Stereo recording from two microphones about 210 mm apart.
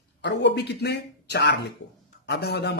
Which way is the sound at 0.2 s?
55° left (ahead or behind).